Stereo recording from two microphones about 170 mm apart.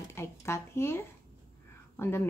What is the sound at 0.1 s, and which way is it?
Speech, 15° left (ahead or behind).